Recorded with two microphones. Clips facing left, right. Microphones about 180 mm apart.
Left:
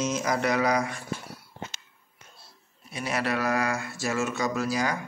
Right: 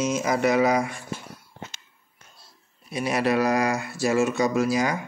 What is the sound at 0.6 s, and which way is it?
Speech, 25° right (ahead or behind).